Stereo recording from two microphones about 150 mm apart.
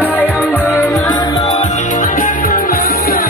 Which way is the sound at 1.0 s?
30° left (ahead or behind).